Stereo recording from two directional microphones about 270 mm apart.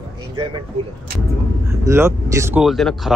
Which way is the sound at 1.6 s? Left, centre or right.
Centre.